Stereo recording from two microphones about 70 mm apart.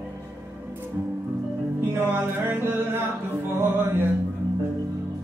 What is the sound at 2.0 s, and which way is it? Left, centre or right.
Music, right.